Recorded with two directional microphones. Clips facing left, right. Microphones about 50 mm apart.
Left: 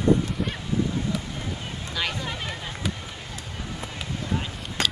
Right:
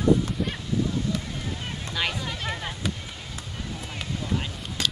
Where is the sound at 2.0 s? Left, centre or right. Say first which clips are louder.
Right 1 dB; centre.